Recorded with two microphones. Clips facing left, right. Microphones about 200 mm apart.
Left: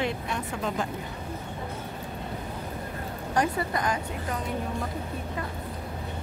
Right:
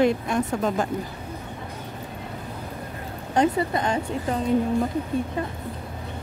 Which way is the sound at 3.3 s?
25° right (ahead or behind).